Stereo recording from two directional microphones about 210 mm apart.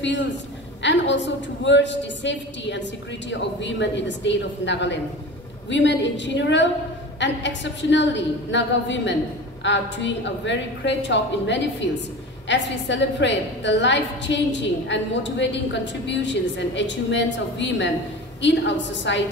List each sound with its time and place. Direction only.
0.0 s a woman's voice: 55° left (ahead or behind)